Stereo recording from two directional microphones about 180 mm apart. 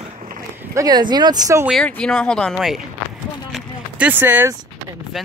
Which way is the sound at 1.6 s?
5° left (ahead or behind).